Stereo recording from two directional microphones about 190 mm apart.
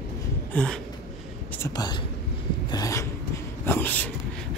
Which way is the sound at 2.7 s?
15° left (ahead or behind).